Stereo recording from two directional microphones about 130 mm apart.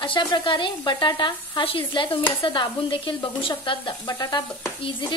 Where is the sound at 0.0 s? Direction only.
40° left (ahead or behind).